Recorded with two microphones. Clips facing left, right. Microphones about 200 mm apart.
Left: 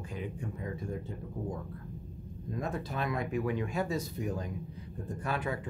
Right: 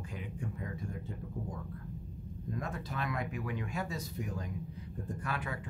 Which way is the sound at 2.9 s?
25° left (ahead or behind).